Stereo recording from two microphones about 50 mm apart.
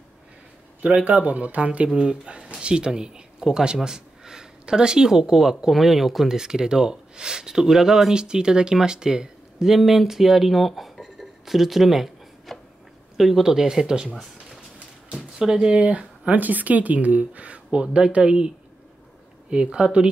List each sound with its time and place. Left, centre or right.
1.0 s speech: right; by 15.7 s centre
15.7 s speech: right
19.5 s speech: centre